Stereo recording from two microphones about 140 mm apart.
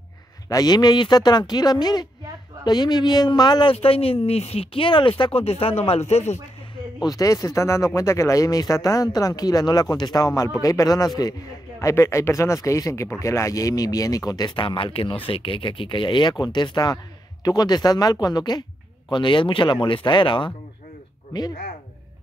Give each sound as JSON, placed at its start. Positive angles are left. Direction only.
{"t": 0.5, "sound": "speech", "side_deg": 25}
{"t": 3.7, "sound": "speech", "side_deg": 45}
{"t": 7.1, "sound": "speech", "side_deg": 25}